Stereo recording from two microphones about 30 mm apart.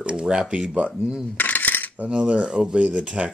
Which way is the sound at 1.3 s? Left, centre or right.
Left.